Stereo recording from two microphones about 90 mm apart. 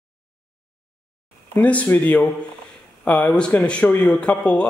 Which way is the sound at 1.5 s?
15° left (ahead or behind).